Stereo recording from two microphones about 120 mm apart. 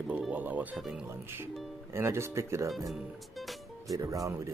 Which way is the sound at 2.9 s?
Centre (ahead or behind).